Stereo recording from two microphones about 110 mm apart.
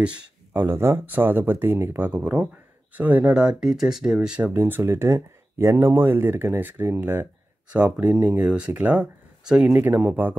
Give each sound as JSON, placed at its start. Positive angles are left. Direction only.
{"t": 0.0, "sound": "speech", "side_deg": -10}
{"t": 4.6, "sound": "speech", "side_deg": -20}